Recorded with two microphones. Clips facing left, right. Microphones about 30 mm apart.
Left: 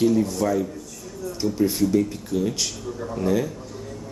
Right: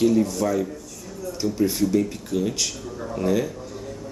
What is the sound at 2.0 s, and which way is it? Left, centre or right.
Speech, centre.